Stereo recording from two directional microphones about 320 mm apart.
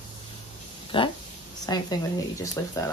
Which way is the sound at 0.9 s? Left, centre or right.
Centre.